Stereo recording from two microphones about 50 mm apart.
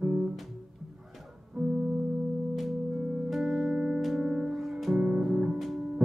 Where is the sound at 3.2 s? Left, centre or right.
Centre.